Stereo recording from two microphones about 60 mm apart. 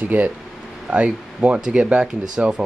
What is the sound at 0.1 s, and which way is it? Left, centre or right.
Speech, right.